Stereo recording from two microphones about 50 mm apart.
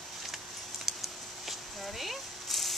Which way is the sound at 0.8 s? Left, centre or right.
Centre.